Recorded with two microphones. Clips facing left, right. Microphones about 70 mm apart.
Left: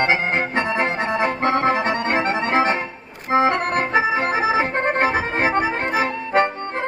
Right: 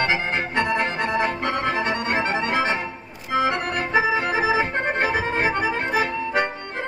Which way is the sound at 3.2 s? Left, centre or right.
Left.